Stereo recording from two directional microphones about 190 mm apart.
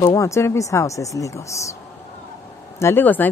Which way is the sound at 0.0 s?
15° left (ahead or behind).